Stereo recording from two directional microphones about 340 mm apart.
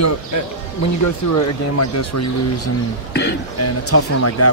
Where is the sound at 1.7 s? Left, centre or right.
Left.